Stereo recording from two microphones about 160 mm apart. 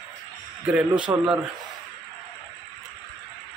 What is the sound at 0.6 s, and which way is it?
Speech, 5° right (ahead or behind).